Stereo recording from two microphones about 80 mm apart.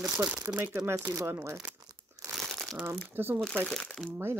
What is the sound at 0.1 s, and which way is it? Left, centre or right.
Speech, right.